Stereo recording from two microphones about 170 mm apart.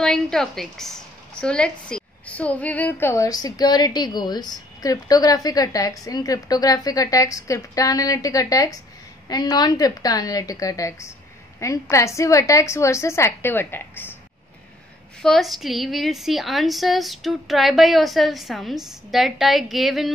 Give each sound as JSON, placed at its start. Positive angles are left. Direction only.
{"t": 0.0, "sound": "a woman's voice", "side_deg": 5}
{"t": 15.2, "sound": "a woman's voice", "side_deg": 0}